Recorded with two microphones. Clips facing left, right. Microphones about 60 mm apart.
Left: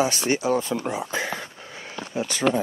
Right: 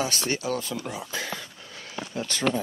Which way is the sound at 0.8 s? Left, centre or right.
Left.